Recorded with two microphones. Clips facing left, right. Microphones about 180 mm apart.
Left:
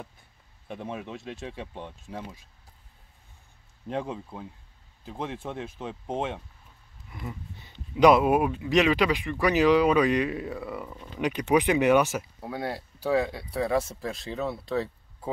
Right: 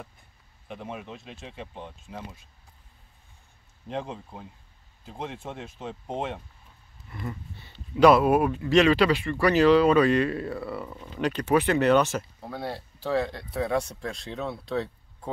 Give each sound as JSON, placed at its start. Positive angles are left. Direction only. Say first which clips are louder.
{"t": 7.1, "sound": "speech", "louder": "right 2 dB", "side_deg": 10}